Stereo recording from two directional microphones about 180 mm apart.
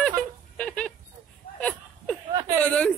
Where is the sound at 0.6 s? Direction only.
5° left (ahead or behind).